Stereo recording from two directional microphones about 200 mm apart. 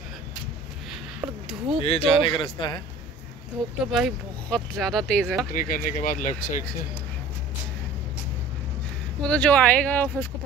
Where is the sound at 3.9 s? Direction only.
Centre (ahead or behind).